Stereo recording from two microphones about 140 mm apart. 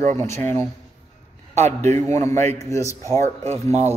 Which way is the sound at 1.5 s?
55° right (ahead or behind).